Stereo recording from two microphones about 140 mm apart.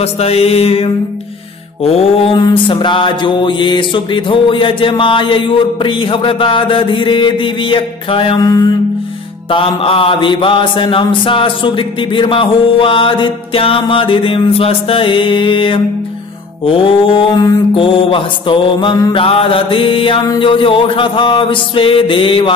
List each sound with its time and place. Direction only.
0.0 s mantra: 45° left (ahead or behind)
2.3 s mantra: 35° left (ahead or behind)
8.5 s mantra: 25° left (ahead or behind)
9.5 s mantra: 40° left (ahead or behind)